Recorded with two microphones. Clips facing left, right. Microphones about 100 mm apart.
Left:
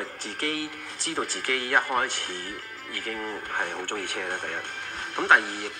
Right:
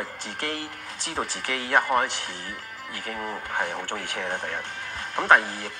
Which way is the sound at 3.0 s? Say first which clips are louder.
Right 1 dB; 35° right (ahead or behind).